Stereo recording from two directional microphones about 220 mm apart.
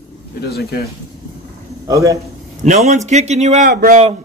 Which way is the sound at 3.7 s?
45° right (ahead or behind).